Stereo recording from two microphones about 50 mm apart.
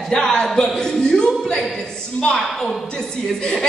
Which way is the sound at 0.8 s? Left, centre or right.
Centre.